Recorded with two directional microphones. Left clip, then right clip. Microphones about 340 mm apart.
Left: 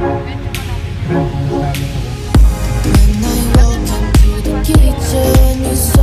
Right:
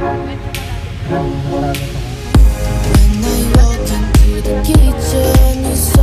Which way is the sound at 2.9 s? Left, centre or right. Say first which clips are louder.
Left 1 dB; centre.